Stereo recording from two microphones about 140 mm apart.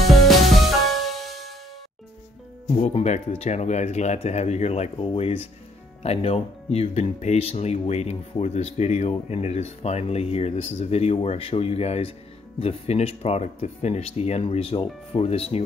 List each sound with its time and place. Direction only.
0.0 s music: centre (ahead or behind)
2.9 s speech: 50° left (ahead or behind)